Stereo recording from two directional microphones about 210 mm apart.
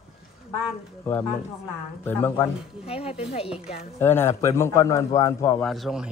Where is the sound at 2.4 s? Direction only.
30° left (ahead or behind).